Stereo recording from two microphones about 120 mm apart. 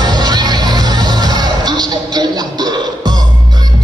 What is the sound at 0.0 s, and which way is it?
Music, 35° right (ahead or behind).